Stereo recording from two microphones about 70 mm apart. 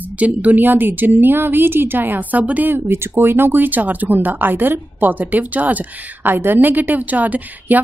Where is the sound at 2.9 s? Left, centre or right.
Right.